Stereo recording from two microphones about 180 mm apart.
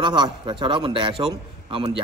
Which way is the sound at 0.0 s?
25° right (ahead or behind).